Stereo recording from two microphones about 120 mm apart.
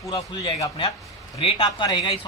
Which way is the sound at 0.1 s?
40° left (ahead or behind).